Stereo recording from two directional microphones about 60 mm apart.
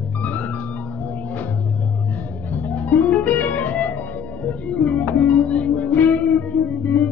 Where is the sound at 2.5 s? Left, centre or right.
Left.